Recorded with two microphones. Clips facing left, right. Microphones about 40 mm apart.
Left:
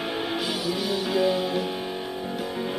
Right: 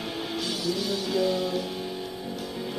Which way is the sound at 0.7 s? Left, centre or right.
Centre.